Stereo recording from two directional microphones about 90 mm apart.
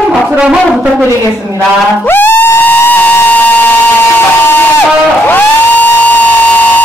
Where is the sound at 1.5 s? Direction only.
20° left (ahead or behind).